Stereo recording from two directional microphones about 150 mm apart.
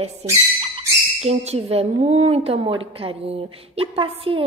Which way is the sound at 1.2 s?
45° right (ahead or behind).